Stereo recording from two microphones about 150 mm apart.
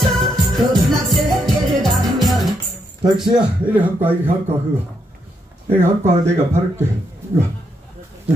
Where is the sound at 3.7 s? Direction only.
15° right (ahead or behind).